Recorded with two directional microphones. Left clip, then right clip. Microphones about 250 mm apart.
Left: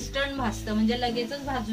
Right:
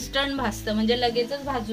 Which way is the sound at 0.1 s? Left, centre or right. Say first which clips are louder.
Right 3 dB; right.